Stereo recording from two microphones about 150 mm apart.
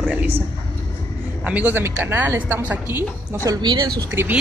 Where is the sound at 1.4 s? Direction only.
10° right (ahead or behind).